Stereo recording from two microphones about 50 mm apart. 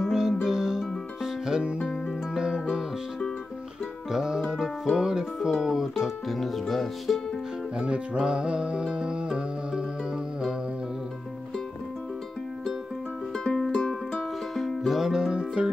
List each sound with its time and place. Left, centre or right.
0.0 s music: centre
4.1 s music: centre
7.7 s music: right
13.3 s music: centre